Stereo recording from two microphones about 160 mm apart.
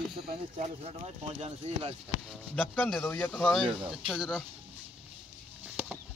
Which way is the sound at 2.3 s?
5° left (ahead or behind).